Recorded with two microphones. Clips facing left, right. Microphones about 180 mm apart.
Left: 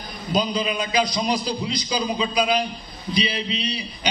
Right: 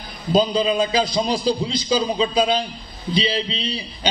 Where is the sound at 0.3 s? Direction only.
30° right (ahead or behind).